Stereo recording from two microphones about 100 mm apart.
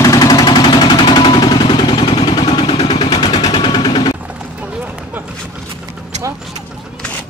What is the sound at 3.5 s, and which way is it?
Machine gun, 55° left (ahead or behind).